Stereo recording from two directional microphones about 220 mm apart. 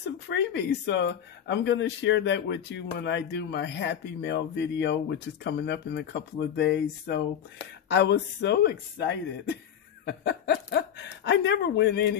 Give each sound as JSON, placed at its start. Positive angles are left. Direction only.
{"t": 0.3, "sound": "speech", "side_deg": 50}